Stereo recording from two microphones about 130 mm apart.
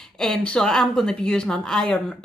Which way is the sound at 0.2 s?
5° left (ahead or behind).